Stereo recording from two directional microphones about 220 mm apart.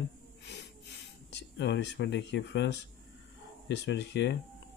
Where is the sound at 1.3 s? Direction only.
50° left (ahead or behind).